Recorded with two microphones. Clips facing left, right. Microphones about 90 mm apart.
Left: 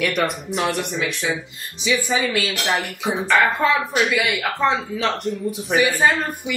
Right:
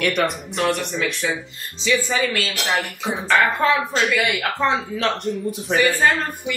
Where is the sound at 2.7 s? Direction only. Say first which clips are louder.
Even; centre (ahead or behind).